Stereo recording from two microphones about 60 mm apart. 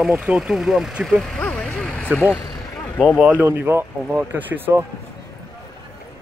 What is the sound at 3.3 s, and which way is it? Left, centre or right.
Speech, right.